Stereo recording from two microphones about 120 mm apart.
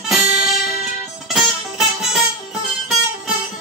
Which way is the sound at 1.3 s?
5° right (ahead or behind).